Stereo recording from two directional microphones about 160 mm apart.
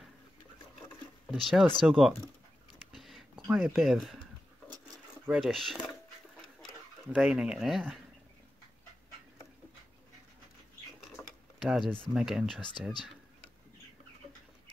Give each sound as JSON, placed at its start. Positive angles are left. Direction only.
{"t": 1.3, "sound": "speech", "side_deg": 0}
{"t": 2.9, "sound": "a sound", "side_deg": 0}
{"t": 3.4, "sound": "speech", "side_deg": -5}
{"t": 5.3, "sound": "speech", "side_deg": 0}
{"t": 7.1, "sound": "speech", "side_deg": -5}
{"t": 11.2, "sound": "tick-tock", "side_deg": 15}
{"t": 11.6, "sound": "speech", "side_deg": 0}